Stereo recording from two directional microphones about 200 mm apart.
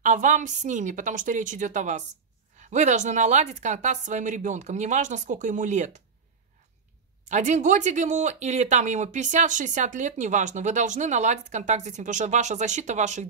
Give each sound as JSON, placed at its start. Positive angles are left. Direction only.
{"t": 0.0, "sound": "speech", "side_deg": -40}
{"t": 7.2, "sound": "speech", "side_deg": -35}